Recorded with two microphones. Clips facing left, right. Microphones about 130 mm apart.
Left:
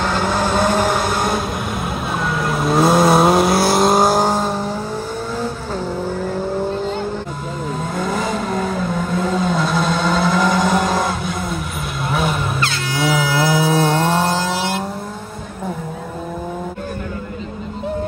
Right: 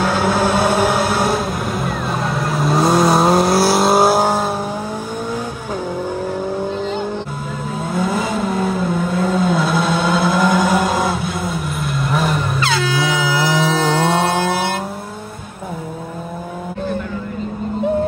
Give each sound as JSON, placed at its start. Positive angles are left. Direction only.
{"t": 0.0, "sound": "vehicle", "side_deg": -5}
{"t": 7.9, "sound": "vehicle", "side_deg": -5}
{"t": 14.5, "sound": "vehicle", "side_deg": -55}